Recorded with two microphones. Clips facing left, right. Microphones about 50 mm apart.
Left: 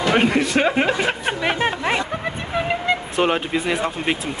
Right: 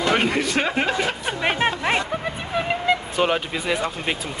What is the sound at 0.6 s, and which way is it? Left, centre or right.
Speech, centre.